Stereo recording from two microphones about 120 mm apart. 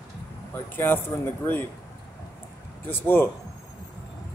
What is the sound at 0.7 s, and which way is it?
Speech, 20° left (ahead or behind).